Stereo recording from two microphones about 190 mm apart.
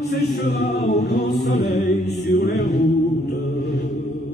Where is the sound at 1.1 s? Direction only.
60° left (ahead or behind).